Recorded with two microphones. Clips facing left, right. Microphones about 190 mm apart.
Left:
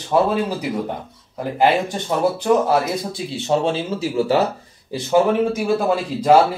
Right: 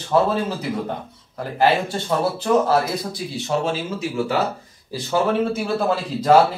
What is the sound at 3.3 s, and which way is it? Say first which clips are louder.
Speech: left 4 dB; 30° left (ahead or behind).